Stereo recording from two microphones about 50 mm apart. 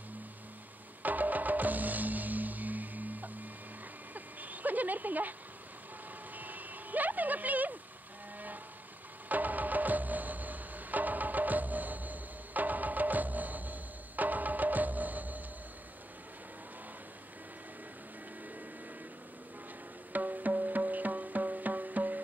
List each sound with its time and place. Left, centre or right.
1.0 s music: right
4.1 s a sound: right
6.3 s reversing beeps: right
9.3 s music: right
20.1 s music: right